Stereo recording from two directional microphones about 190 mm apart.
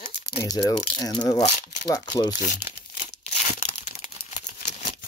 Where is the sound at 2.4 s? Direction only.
40° left (ahead or behind).